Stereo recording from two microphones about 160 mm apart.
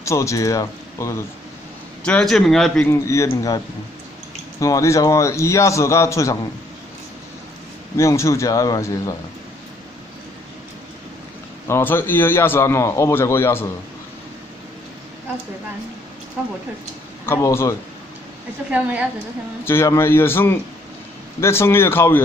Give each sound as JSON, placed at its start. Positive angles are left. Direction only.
{"t": 0.0, "sound": "speech", "side_deg": 20}
{"t": 2.0, "sound": "a man's voice", "side_deg": 5}
{"t": 2.9, "sound": "a man's voice", "side_deg": 20}
{"t": 8.0, "sound": "a man's voice", "side_deg": 20}
{"t": 11.6, "sound": "a man's voice", "side_deg": 15}
{"t": 17.3, "sound": "a man's voice", "side_deg": 15}
{"t": 18.7, "sound": "a woman's voice", "side_deg": -10}
{"t": 19.6, "sound": "a man's voice", "side_deg": 15}